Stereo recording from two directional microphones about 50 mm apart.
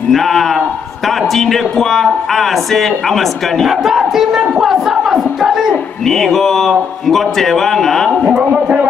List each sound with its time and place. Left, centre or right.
0.1 s a man's voice: centre
3.8 s a man's voice: centre
8.4 s a man's voice: right